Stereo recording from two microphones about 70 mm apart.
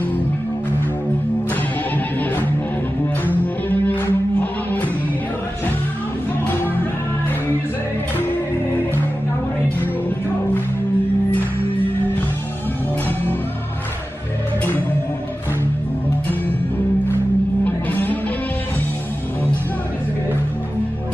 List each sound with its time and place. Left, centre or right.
2.0 s music: left
6.4 s music: left
9.8 s music: left
17.6 s music: left